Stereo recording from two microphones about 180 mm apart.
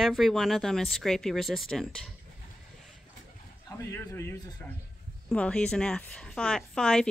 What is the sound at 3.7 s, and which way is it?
A man's voice, 15° left (ahead or behind).